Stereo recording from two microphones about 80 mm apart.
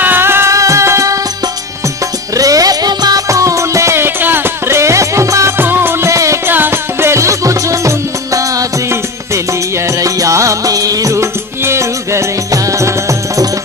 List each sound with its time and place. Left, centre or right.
0.0 s music: right
2.3 s music: right
3.3 s music: right
5.6 s music: right
6.5 s music: right